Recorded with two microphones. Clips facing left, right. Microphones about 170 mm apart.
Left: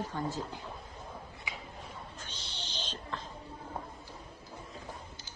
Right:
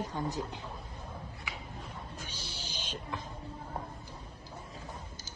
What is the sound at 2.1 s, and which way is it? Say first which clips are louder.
Music: right 2 dB; 10° right (ahead or behind).